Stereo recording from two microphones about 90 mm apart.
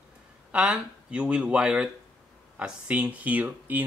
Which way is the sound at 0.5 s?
10° right (ahead or behind).